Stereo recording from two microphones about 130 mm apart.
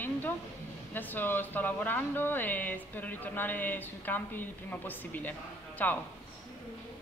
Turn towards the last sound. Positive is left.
turn(degrees=15)  # may be behind; listen again after turning